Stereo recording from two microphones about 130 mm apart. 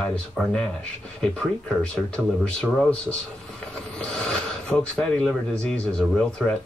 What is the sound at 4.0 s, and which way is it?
Speech, 5° left (ahead or behind).